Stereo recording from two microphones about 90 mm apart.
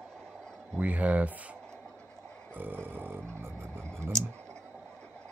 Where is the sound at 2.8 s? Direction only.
25° right (ahead or behind).